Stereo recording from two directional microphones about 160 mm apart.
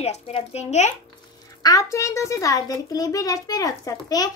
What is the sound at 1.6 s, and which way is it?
A child's voice, 20° left (ahead or behind).